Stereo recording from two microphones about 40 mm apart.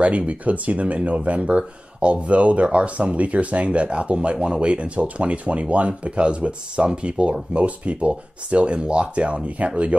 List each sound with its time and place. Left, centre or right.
0.0 s speech: right